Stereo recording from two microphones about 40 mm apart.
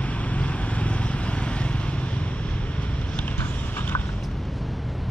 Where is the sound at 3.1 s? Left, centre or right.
Left.